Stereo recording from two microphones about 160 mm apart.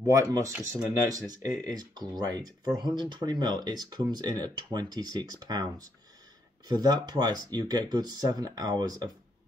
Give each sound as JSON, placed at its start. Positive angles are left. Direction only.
{"t": 0.0, "sound": "speech", "side_deg": -20}